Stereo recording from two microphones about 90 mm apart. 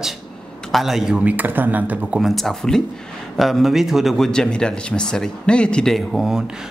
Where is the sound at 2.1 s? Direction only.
Centre (ahead or behind).